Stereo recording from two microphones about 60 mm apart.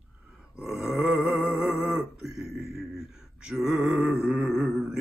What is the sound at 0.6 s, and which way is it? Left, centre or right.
Grunt, centre.